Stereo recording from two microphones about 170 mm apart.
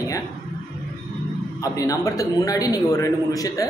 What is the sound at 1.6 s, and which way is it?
A man's voice, 20° left (ahead or behind).